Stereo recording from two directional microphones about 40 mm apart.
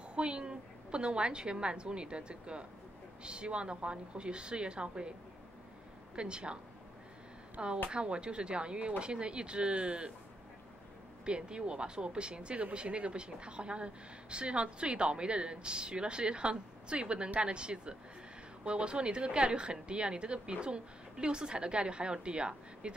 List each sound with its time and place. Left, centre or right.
0.1 s speech: right
6.1 s speech: right
7.6 s speech: right
11.2 s speech: right